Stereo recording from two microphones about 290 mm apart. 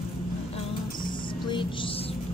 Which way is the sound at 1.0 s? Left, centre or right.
Centre.